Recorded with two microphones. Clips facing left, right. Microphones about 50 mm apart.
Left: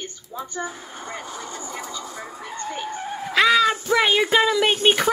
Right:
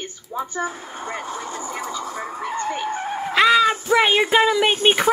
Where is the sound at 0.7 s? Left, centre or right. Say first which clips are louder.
Right 4 dB; right.